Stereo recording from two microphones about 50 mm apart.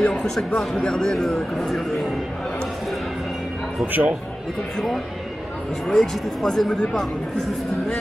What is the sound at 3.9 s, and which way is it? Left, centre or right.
Speech, right.